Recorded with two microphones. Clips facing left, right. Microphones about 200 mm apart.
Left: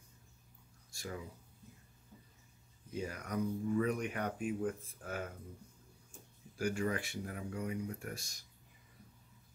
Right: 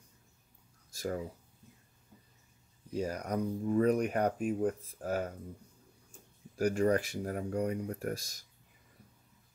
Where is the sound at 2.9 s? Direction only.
40° right (ahead or behind).